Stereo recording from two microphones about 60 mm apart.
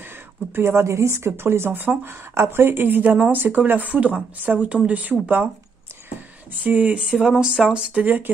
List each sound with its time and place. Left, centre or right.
0.6 s speech: right
6.6 s speech: right
7.0 s speech: centre; by 8.3 s right